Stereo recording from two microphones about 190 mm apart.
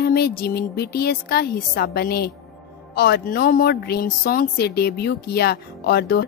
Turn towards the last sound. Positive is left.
turn(degrees=55)  # may be behind; listen again after turning